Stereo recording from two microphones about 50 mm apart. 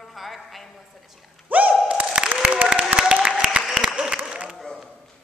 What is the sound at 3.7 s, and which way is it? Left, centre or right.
Applause, centre.